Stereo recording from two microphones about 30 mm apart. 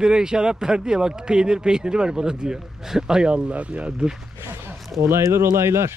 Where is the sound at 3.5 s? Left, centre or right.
Right.